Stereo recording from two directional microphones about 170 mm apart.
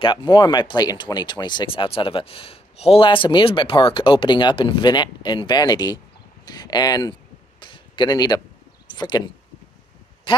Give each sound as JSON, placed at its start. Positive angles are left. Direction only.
{"t": 0.0, "sound": "speech", "side_deg": 30}
{"t": 7.6, "sound": "a sound", "side_deg": 30}
{"t": 8.8, "sound": "speech", "side_deg": 25}